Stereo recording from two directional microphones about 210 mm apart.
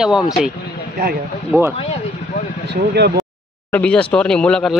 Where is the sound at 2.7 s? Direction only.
50° right (ahead or behind).